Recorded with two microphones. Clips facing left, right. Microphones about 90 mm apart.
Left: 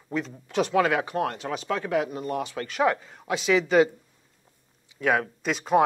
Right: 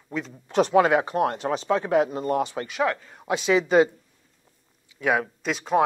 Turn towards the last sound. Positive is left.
turn(degrees=0)  # may be behind; listen again after turning